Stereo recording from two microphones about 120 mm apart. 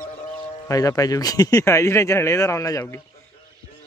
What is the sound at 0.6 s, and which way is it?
Speech, 30° left (ahead or behind).